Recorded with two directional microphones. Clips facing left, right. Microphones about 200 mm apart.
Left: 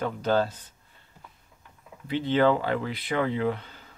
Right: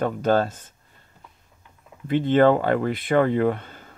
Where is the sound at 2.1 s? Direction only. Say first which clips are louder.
Right 5 dB; 50° right (ahead or behind).